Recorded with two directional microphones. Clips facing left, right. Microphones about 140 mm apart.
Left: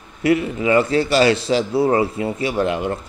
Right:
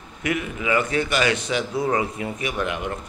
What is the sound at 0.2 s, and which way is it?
A man's voice, 30° left (ahead or behind).